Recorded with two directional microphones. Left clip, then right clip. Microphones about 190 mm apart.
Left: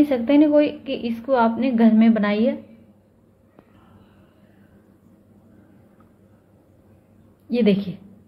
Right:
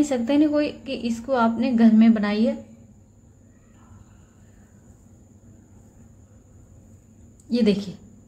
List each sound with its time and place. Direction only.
0.1 s a woman's voice: 5° right (ahead or behind)
7.4 s a woman's voice: 5° right (ahead or behind)